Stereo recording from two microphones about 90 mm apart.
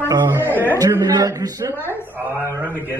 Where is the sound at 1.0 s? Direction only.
40° right (ahead or behind).